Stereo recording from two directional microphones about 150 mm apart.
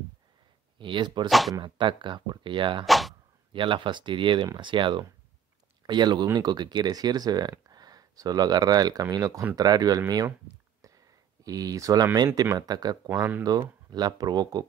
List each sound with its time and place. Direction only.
0.7 s speech: 35° right (ahead or behind)
2.8 s speech: centre (ahead or behind)
3.5 s speech: 35° right (ahead or behind)
11.4 s speech: 25° right (ahead or behind)